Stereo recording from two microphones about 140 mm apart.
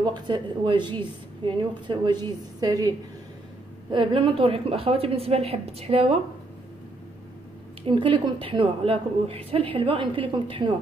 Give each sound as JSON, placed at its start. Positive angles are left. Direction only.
{"t": 0.0, "sound": "a woman's voice", "side_deg": -30}
{"t": 3.9, "sound": "a woman's voice", "side_deg": -40}
{"t": 7.8, "sound": "a woman's voice", "side_deg": -35}